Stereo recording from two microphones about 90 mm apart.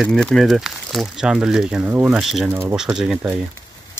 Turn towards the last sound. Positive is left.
turn(degrees=-5)  # may be behind; listen again after turning